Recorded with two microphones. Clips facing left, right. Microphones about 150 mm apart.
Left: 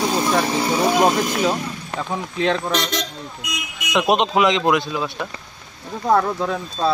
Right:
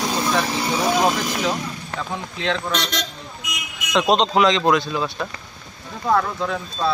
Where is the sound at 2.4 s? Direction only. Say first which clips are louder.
Left 3 dB; 45° left (ahead or behind).